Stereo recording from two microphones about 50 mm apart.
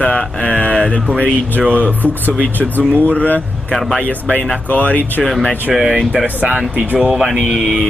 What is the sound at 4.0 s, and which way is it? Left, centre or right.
Speech, left.